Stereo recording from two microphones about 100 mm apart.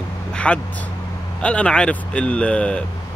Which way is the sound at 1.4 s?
10° left (ahead or behind).